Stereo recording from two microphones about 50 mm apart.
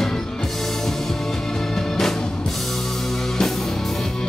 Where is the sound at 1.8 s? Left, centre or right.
Centre.